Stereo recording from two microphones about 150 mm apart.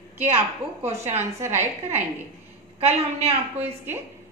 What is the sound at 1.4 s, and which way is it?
Speech, 15° right (ahead or behind).